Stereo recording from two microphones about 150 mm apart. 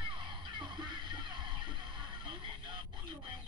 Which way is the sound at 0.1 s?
30° right (ahead or behind).